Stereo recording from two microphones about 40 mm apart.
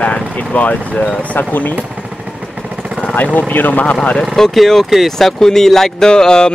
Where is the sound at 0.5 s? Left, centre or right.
Left.